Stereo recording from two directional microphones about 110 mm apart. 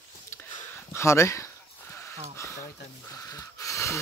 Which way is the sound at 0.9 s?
25° left (ahead or behind).